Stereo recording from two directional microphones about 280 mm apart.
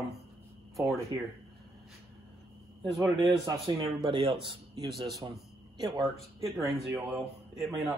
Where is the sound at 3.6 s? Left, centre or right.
Centre.